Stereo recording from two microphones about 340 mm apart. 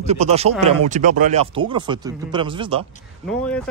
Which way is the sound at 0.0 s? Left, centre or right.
Centre.